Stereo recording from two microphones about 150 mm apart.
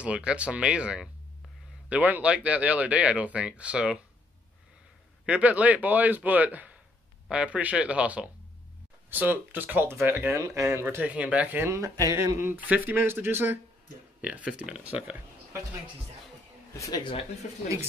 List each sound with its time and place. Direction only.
0.0 s speech: 10° right (ahead or behind)
5.2 s speech: 10° right (ahead or behind)
16.7 s speech: 20° left (ahead or behind)